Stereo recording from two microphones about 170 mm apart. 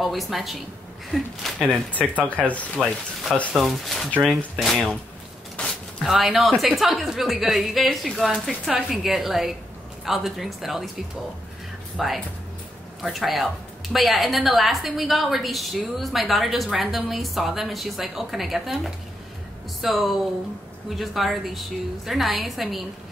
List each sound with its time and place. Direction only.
0.0 s a woman's voice: centre (ahead or behind)
2.7 s a woman's voice: 5° right (ahead or behind)
12.0 s a woman's voice: centre (ahead or behind)
19.8 s a woman's voice: centre (ahead or behind)